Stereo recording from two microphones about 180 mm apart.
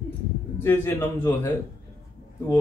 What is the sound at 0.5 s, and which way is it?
Speech, 10° left (ahead or behind).